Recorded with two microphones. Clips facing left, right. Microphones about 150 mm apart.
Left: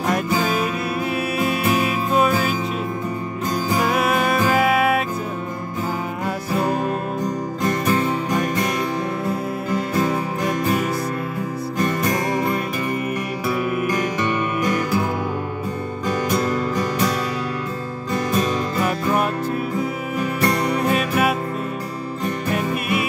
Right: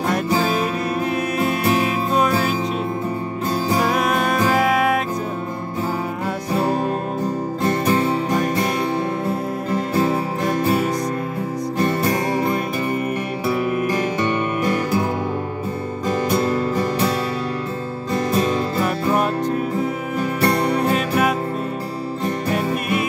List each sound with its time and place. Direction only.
0.3 s music: 35° right (ahead or behind)
3.9 s music: 5° left (ahead or behind)
6.5 s music: 30° right (ahead or behind)
9.7 s music: 30° right (ahead or behind)
16.1 s music: 30° right (ahead or behind)
18.1 s music: 30° right (ahead or behind)
22.5 s music: 35° right (ahead or behind)